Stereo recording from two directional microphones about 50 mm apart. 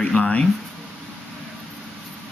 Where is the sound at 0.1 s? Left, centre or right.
Centre.